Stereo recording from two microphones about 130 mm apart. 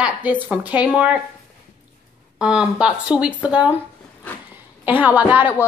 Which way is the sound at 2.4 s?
5° right (ahead or behind).